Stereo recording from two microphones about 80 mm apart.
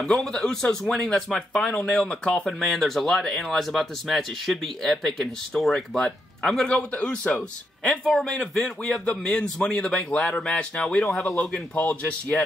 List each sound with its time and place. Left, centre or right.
0.0 s speech: centre
11.9 s speech: centre